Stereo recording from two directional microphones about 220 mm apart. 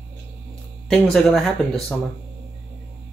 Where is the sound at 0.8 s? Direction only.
5° left (ahead or behind).